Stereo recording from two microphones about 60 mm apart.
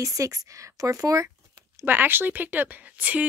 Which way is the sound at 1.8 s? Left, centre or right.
Right.